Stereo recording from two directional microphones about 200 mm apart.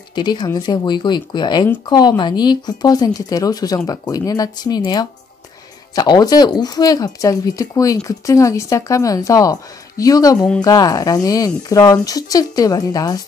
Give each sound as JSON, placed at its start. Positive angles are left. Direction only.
{"t": 0.1, "sound": "speech", "side_deg": 20}